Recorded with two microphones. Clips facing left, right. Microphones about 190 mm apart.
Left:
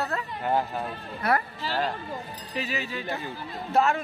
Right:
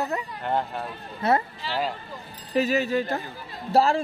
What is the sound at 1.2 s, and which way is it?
Speech, 25° right (ahead or behind).